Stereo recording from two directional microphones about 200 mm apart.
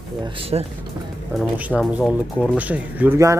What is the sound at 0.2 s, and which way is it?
Speech, 30° right (ahead or behind).